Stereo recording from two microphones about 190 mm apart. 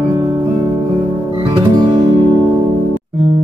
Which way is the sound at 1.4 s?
25° right (ahead or behind).